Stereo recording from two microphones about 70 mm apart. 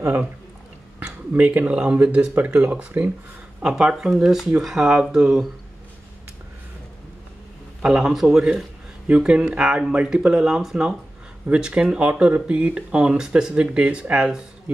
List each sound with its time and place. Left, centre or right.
1.0 s speech: right; by 5.5 s centre
7.8 s speech: centre